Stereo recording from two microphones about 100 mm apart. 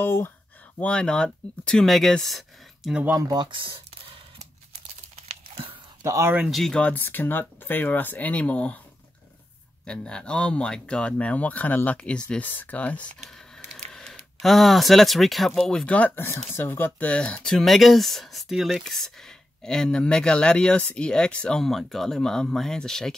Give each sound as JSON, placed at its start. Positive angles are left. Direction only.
{"t": 0.0, "sound": "speech", "side_deg": 20}
{"t": 0.7, "sound": "speech", "side_deg": 10}
{"t": 2.9, "sound": "speech", "side_deg": -15}
{"t": 3.2, "sound": "computer keyboard", "side_deg": -45}
{"t": 5.1, "sound": "tearing", "side_deg": -80}
{"t": 6.0, "sound": "speech", "side_deg": -30}
{"t": 6.4, "sound": "speech", "side_deg": 0}
{"t": 9.8, "sound": "speech", "side_deg": 10}